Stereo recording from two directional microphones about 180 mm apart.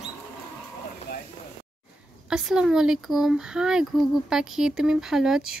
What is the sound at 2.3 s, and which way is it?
Speech, 5° right (ahead or behind).